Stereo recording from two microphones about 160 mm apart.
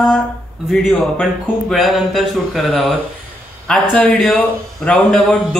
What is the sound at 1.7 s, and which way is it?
A man's voice, centre (ahead or behind).